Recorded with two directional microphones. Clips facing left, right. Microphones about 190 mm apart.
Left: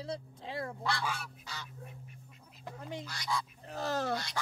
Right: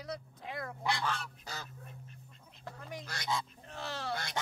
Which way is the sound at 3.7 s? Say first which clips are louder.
Left 10 dB; 40° left (ahead or behind).